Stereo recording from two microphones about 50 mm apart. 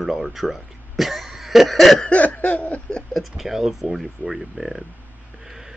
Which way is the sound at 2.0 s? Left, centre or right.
Left.